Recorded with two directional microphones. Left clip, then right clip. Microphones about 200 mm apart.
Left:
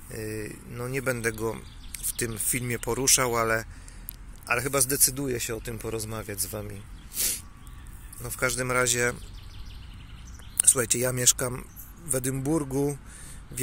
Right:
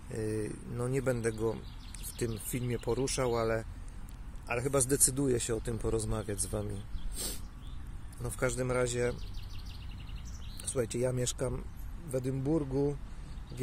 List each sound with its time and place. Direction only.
0.1 s speech: 15° right (ahead or behind); by 4.7 s centre (ahead or behind)
4.7 s speech: 15° right (ahead or behind)
8.2 s speech: 10° right (ahead or behind)
10.6 s speech: 5° left (ahead or behind)